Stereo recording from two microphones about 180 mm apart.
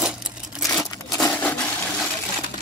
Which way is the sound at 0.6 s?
Centre (ahead or behind).